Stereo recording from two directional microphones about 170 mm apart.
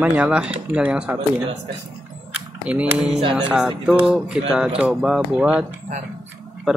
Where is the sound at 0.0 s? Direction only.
5° right (ahead or behind).